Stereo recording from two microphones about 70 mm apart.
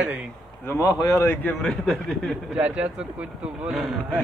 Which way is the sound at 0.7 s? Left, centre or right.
Left.